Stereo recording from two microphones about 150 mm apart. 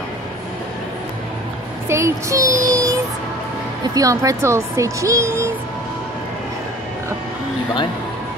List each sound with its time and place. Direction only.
1.9 s speech: 20° right (ahead or behind)
2.6 s music: 25° right (ahead or behind)
3.8 s speech: 25° right (ahead or behind)